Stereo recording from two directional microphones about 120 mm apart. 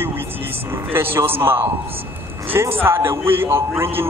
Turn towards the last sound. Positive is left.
turn(degrees=-20)  # may be behind; listen again after turning